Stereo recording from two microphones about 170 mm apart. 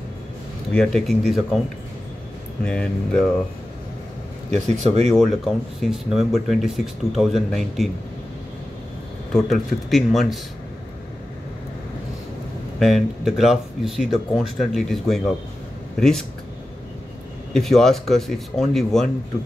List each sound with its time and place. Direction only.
0.7 s speech: centre (ahead or behind)
2.6 s speech: 5° left (ahead or behind)
4.5 s speech: 40° right (ahead or behind)
5.1 s speech: centre (ahead or behind)
9.3 s speech: centre (ahead or behind)
12.7 s speech: centre (ahead or behind)
17.6 s speech: centre (ahead or behind)